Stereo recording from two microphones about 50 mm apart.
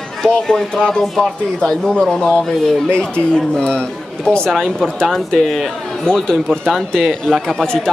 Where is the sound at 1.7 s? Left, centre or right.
Centre.